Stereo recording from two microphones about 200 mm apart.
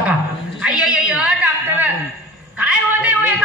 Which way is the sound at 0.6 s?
5° right (ahead or behind).